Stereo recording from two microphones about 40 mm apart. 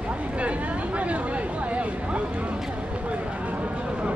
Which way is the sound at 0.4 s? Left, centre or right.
Right.